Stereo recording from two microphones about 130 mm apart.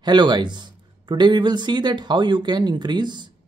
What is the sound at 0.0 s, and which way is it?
Speech, 35° right (ahead or behind).